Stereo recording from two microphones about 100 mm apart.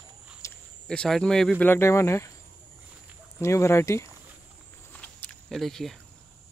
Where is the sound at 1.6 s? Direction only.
25° left (ahead or behind).